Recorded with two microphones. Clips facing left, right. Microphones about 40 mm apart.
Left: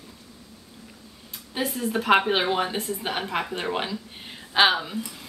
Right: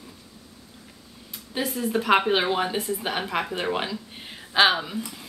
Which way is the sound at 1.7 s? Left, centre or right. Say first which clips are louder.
Even; centre.